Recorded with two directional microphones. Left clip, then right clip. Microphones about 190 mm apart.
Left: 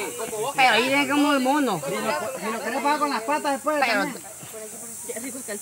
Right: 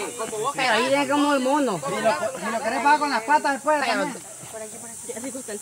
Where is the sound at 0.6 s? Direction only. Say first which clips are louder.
Left 2 dB; 45° left (ahead or behind).